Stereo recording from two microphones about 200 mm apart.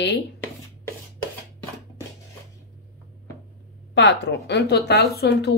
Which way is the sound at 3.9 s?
60° left (ahead or behind).